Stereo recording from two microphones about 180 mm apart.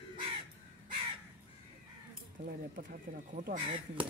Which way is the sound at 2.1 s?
55° right (ahead or behind).